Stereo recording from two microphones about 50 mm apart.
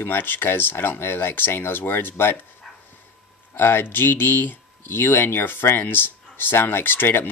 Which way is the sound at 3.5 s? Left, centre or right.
Left.